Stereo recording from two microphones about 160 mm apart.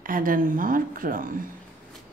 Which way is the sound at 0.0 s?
60° right (ahead or behind).